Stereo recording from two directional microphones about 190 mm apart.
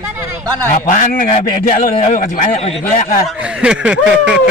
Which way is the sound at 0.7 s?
45° left (ahead or behind).